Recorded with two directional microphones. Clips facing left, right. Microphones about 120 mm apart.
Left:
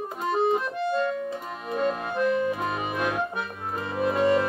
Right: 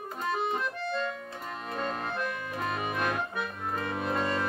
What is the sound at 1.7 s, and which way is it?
Accordion, 5° left (ahead or behind).